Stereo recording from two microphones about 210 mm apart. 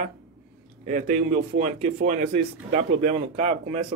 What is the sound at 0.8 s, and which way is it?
Speech, 35° right (ahead or behind).